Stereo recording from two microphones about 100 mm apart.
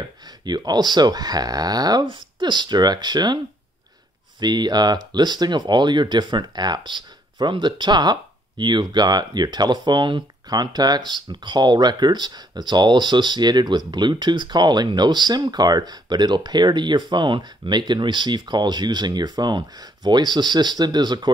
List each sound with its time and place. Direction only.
0.5 s speech: 45° right (ahead or behind)
4.4 s speech: 45° right (ahead or behind)